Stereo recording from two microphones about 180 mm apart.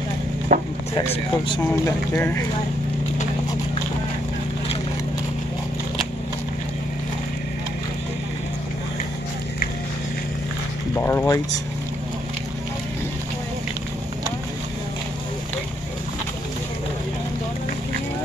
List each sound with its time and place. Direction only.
0.5 s a sound: 40° right (ahead or behind)
0.9 s speech: 25° left (ahead or behind)
11.0 s speech: 15° left (ahead or behind)